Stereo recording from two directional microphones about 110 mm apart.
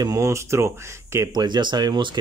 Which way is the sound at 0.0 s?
30° right (ahead or behind).